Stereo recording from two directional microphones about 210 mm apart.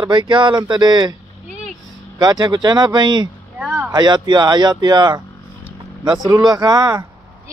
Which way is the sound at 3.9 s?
20° right (ahead or behind).